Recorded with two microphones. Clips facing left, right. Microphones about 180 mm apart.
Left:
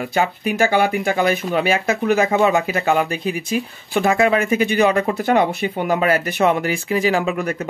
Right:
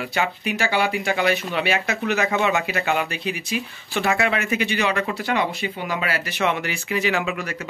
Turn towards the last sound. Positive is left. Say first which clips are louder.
# left 5 dB
turn(degrees=40)  # may be behind; listen again after turning